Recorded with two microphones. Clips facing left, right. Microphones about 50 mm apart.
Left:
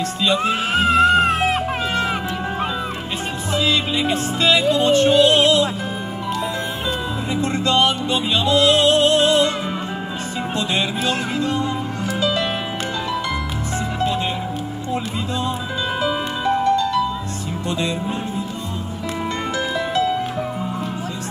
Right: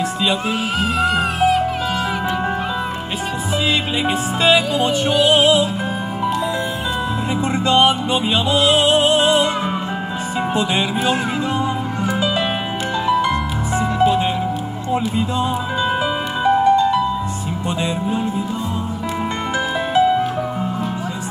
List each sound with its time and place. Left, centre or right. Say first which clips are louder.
3.5 s music: left 1 dB; centre
7.3 s music: right 2 dB; centre
10.5 s music: right 2 dB; centre
13.7 s music: right 6 dB; centre
16.0 s music: right 2 dB; centre
19.9 s music: right 7 dB; centre